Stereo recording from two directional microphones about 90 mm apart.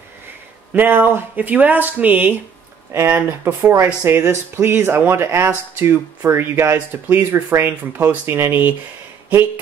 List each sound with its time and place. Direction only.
0.7 s speech: 25° right (ahead or behind)